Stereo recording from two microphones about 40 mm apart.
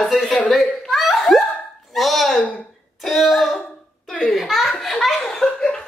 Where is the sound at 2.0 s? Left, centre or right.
Centre.